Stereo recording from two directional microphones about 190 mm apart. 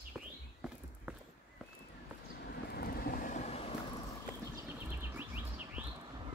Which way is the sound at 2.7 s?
55° left (ahead or behind).